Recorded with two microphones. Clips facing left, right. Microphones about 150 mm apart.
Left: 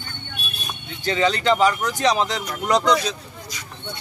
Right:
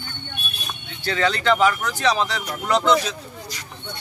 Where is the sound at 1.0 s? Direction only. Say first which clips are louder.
Left 1 dB; 15° left (ahead or behind).